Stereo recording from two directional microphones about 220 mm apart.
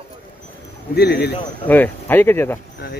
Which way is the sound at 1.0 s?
45° left (ahead or behind).